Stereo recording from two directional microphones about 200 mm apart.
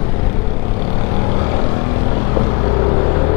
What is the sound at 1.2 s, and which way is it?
Vehicle, 20° left (ahead or behind).